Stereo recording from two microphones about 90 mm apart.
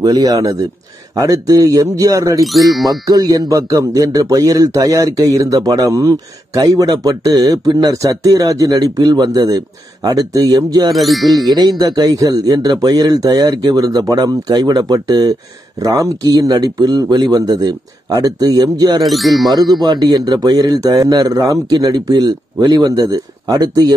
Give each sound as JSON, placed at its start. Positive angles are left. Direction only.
{"t": 0.0, "sound": "a man's voice", "side_deg": -45}
{"t": 2.4, "sound": "speech", "side_deg": 0}
{"t": 2.9, "sound": "a man's voice", "side_deg": -40}
{"t": 10.9, "sound": "speech", "side_deg": 0}
{"t": 11.8, "sound": "a man's voice", "side_deg": -45}
{"t": 19.0, "sound": "speech", "side_deg": 0}
{"t": 19.7, "sound": "a man's voice", "side_deg": -50}